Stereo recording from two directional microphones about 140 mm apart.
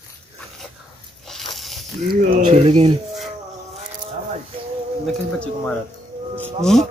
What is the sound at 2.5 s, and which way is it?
Speech, 50° right (ahead or behind).